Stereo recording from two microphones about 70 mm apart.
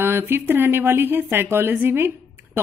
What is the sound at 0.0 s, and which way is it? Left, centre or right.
Speech, right.